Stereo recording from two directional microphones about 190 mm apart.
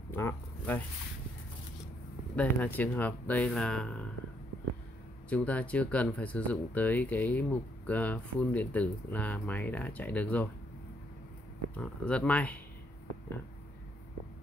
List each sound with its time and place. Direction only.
0.1 s zipper: 10° left (ahead or behind)
2.3 s speech: 10° left (ahead or behind)
5.3 s speech: 5° left (ahead or behind)
11.7 s speech: 5° left (ahead or behind)